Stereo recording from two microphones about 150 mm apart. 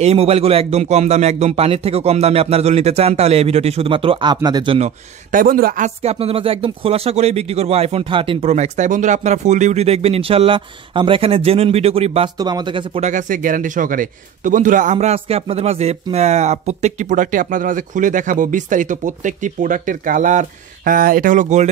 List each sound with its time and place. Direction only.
0.0 s speech: 40° right (ahead or behind)
4.7 s a man's voice: 55° right (ahead or behind); by 5.9 s 70° right (ahead or behind)
6.0 s speech: 40° right (ahead or behind)
12.4 s speech: 25° right (ahead or behind)
13.0 s a man's voice: 60° right (ahead or behind)